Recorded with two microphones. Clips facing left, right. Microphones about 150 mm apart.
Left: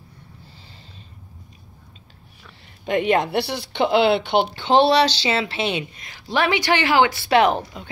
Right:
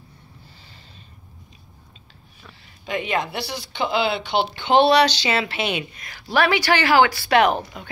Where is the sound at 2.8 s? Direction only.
60° left (ahead or behind).